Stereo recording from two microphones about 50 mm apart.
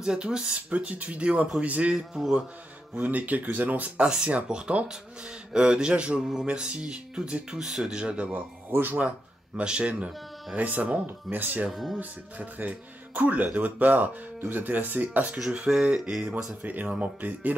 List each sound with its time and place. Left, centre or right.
0.0 s a man's voice: centre
0.7 s speech: right
2.0 s a man's voice: centre
3.0 s speech: right
9.6 s speech: right
11.7 s speech: centre
12.0 s speech: right
15.5 s speech: right
16.6 s speech: right